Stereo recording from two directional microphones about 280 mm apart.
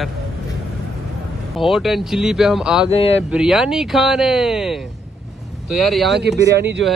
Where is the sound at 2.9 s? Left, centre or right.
Left.